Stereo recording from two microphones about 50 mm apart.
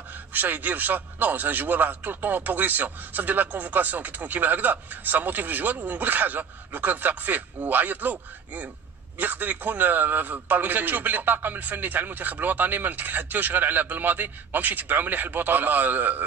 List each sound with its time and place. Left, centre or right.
0.3 s a man's voice: right